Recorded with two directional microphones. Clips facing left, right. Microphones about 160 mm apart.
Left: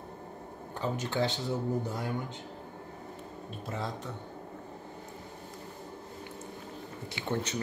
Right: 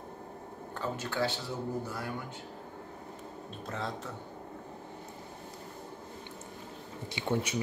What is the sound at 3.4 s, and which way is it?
Speech, centre (ahead or behind).